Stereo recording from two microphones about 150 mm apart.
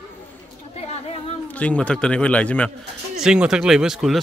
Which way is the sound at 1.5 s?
10° left (ahead or behind).